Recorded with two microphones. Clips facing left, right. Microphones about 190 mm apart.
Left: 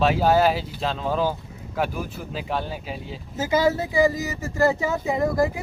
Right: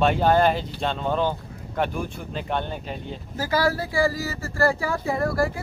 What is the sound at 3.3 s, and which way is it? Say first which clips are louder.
Speech: left 3 dB; 20° left (ahead or behind).